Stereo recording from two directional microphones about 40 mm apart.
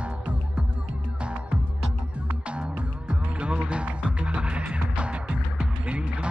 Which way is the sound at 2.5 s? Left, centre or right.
Right.